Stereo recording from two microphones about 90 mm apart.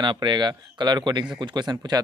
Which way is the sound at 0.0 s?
60° right (ahead or behind).